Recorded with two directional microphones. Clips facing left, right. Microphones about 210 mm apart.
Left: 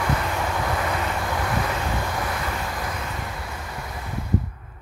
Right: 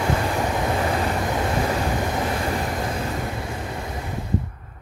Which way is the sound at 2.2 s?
30° right (ahead or behind).